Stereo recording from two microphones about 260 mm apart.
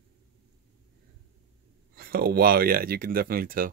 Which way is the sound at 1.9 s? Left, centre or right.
Right.